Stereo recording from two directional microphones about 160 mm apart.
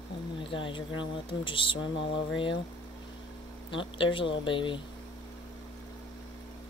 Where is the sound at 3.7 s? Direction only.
30° left (ahead or behind).